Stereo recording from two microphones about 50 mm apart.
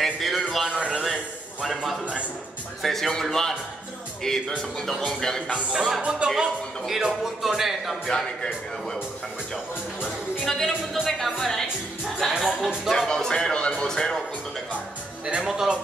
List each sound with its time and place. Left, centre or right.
0.0 s a sound: centre
0.7 s a sound: centre
1.6 s speech: centre
2.8 s a man's voice: centre
5.7 s speech: centre
6.0 s speech: centre
6.4 s speech: centre
8.1 s a man's voice: centre
10.4 s a man's voice: centre
12.3 s speech: centre
12.9 s a man's voice: centre
15.2 s speech: centre